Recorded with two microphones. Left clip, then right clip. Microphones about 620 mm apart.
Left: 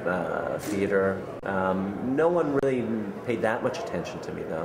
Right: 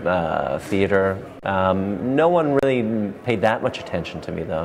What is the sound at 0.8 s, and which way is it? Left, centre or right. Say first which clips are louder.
Speech: right 6 dB; right.